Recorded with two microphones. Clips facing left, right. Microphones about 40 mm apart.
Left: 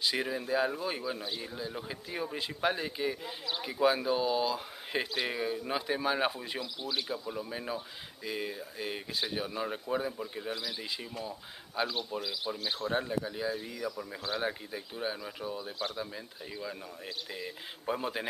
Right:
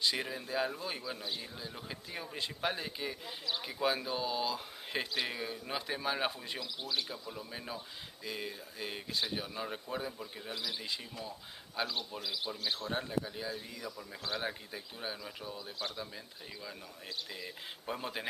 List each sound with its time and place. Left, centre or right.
0.0 s speech: centre
10.5 s speech: left
11.2 s speech: centre
12.4 s speech: centre
17.3 s speech: centre